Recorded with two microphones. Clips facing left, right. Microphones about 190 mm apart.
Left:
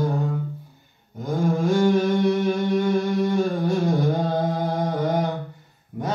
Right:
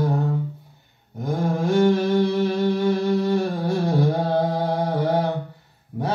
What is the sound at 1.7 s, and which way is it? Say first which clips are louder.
Humming: right 2 dB; 60° right (ahead or behind).